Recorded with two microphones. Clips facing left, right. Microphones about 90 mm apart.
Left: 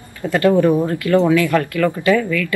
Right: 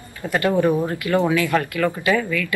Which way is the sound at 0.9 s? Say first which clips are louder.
Left 5 dB; 20° right (ahead or behind).